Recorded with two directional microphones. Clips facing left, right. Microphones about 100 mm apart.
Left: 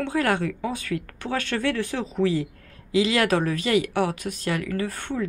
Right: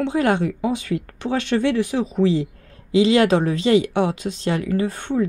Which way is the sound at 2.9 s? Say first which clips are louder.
Right 6 dB; 30° right (ahead or behind).